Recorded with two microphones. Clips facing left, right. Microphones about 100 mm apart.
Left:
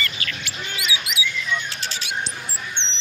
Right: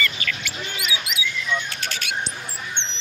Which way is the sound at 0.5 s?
45° right (ahead or behind).